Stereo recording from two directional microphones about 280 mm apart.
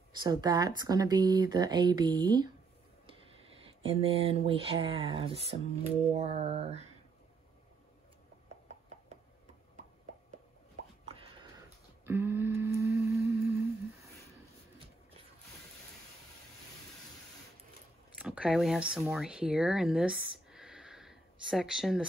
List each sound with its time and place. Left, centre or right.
0.2 s speech: centre
3.5 s speech: centre
12.1 s livestock: centre
18.2 s speech: centre